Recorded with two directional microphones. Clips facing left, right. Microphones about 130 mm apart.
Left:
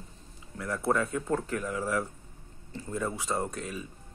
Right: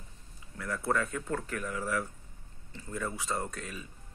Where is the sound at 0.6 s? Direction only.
20° left (ahead or behind).